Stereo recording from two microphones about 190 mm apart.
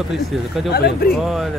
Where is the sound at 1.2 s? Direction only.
Centre (ahead or behind).